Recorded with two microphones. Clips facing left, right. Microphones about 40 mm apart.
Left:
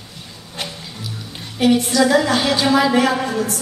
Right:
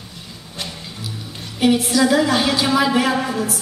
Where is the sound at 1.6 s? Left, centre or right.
Centre.